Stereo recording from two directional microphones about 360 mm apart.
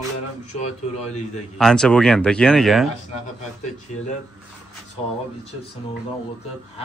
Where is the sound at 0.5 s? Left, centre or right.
Centre.